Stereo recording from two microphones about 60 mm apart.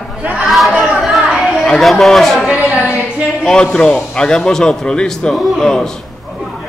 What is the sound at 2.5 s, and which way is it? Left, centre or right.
Speech, right.